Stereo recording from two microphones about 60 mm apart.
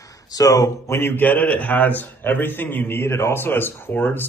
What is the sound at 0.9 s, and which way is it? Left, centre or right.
A man's voice, left.